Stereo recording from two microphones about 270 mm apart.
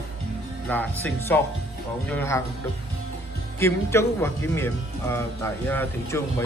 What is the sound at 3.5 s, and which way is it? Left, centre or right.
Speech, centre.